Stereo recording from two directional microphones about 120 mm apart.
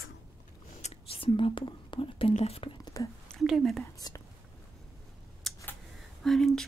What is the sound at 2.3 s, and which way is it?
Speech, 60° left (ahead or behind).